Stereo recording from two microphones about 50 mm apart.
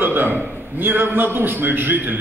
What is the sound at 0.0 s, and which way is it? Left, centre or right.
A man's voice, right.